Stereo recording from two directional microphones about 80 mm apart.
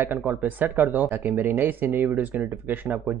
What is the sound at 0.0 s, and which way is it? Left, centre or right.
Speech, right.